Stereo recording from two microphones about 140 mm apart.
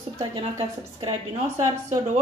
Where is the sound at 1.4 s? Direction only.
20° right (ahead or behind).